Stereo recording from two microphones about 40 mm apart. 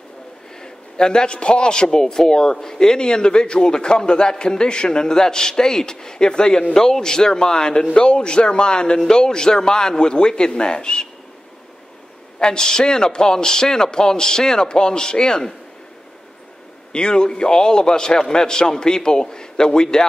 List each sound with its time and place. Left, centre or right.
0.6 s a man's voice: centre
12.4 s a man's voice: centre
16.9 s a man's voice: left